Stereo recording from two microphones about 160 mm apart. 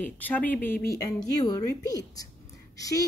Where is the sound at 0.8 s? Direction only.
20° left (ahead or behind).